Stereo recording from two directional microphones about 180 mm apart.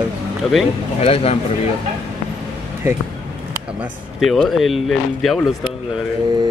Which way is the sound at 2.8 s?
15° right (ahead or behind).